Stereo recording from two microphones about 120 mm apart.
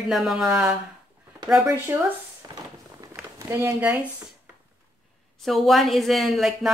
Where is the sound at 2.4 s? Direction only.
30° right (ahead or behind).